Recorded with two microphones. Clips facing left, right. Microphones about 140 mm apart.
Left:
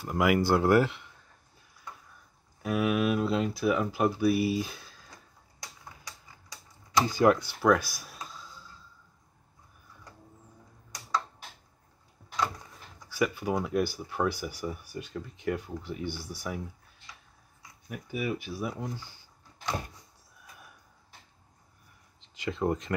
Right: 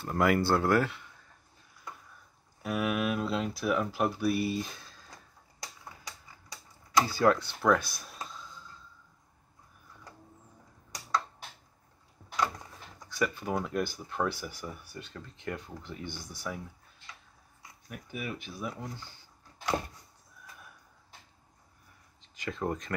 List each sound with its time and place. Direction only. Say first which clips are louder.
0.0 s speech: left 1 dB; 5° left (ahead or behind)
0.6 s speech: left 4 dB; 20° left (ahead or behind)
2.6 s speech: left 3 dB; centre (ahead or behind)
7.1 s speech: left 4 dB; 15° left (ahead or behind)
7.4 s a sound: left 2 dB; 5° left (ahead or behind)
13.1 s speech: left 3 dB; 10° left (ahead or behind)
17.8 s speech: left 6 dB; 10° left (ahead or behind)
22.4 s speech: left 4 dB; 15° left (ahead or behind)